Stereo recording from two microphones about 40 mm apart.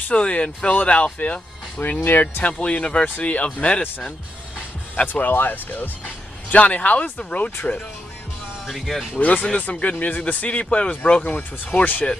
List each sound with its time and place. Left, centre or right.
0.1 s speech: left
1.8 s speech: left
2.4 s speech: left
4.6 s music: left
5.2 s speech: left
8.8 s speech: centre
9.1 s speech: left
9.6 s speech: left
11.2 s speech: left